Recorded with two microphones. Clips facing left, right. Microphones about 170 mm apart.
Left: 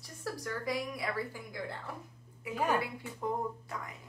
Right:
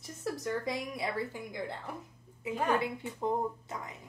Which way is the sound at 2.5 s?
10° left (ahead or behind).